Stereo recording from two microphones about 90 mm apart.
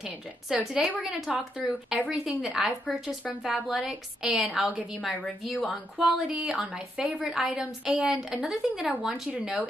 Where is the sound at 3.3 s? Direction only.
15° right (ahead or behind).